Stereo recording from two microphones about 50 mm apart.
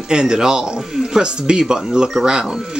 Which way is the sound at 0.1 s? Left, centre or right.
Centre.